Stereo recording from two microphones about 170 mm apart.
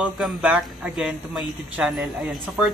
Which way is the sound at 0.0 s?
5° right (ahead or behind).